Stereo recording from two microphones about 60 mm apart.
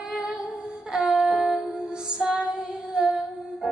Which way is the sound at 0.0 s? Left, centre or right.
Centre.